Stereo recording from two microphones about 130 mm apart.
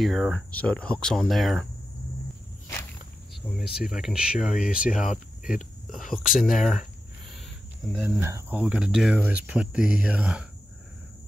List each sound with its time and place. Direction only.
0.0 s speech: centre (ahead or behind)
3.5 s speech: 5° right (ahead or behind)
8.0 s speech: 20° right (ahead or behind)
8.5 s speech: 10° right (ahead or behind)